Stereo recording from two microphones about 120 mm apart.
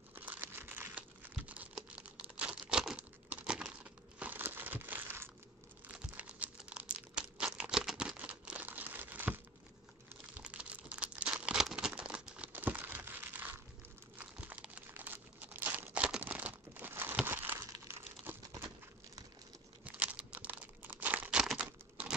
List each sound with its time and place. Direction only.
0.1 s crumpling: 15° right (ahead or behind)
18.3 s a sound: 15° right (ahead or behind)
19.8 s crumpling: 10° right (ahead or behind)